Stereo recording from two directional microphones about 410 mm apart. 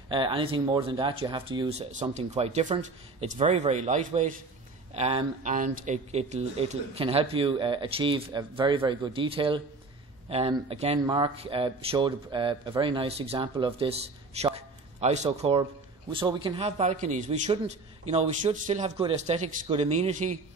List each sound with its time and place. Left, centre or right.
0.1 s speech: centre